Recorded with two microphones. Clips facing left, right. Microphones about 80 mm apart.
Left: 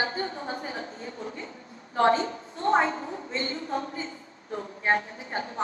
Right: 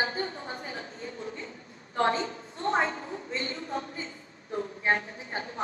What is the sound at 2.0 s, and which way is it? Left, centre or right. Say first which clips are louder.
Speech: left 4 dB; left.